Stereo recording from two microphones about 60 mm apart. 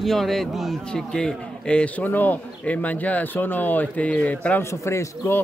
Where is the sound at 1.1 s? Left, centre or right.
Centre.